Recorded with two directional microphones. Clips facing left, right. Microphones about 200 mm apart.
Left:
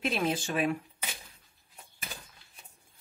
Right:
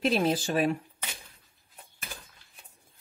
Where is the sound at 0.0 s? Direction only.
35° right (ahead or behind).